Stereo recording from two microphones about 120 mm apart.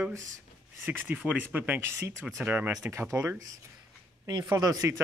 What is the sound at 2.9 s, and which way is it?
Speech, 25° right (ahead or behind).